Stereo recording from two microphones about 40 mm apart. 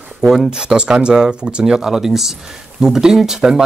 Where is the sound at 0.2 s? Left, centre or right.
Centre.